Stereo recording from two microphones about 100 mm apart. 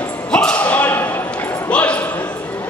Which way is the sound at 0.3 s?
10° left (ahead or behind).